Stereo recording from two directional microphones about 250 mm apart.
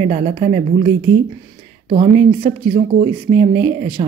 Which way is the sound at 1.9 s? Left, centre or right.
Right.